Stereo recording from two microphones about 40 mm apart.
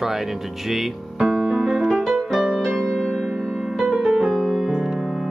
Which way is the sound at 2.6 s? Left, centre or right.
Centre.